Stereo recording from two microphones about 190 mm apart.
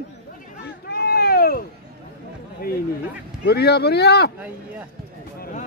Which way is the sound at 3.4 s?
60° left (ahead or behind).